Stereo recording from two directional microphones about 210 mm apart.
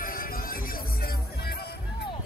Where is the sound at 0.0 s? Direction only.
40° left (ahead or behind).